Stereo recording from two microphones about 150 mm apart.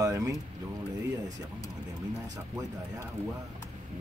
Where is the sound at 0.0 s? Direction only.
20° right (ahead or behind).